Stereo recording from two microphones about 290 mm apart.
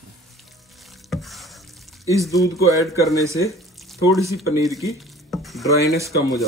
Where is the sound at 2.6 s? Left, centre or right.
Centre.